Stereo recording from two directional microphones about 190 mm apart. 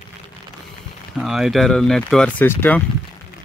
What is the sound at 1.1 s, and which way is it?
Speech, centre (ahead or behind).